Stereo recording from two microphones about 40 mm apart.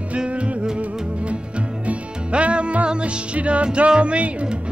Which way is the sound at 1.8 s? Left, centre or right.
Right.